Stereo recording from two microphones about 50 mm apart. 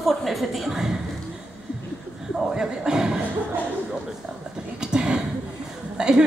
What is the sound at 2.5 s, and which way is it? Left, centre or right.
Speech, centre.